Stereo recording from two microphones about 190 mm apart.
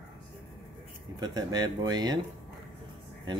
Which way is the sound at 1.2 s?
20° right (ahead or behind).